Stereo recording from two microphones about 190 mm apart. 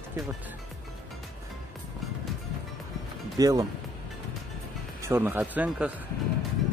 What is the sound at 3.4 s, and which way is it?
Speech, 20° right (ahead or behind).